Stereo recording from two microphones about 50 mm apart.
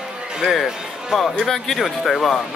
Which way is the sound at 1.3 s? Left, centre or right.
Centre.